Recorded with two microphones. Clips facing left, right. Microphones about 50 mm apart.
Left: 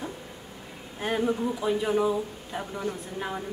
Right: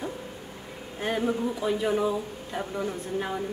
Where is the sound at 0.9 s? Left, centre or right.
Centre.